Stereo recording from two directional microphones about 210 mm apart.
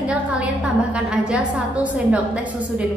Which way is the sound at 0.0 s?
5° right (ahead or behind).